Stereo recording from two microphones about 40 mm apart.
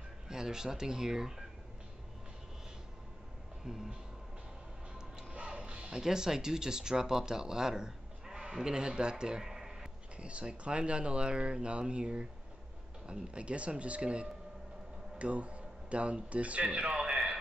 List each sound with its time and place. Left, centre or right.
0.3 s speech: centre
3.6 s speech: centre
5.3 s music: right
5.9 s speech: centre
9.2 s a sound: centre
10.1 s speech: right
17.0 s a sound: centre